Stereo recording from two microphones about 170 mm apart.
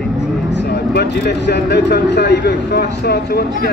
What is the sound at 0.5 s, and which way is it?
Speech, 75° left (ahead or behind).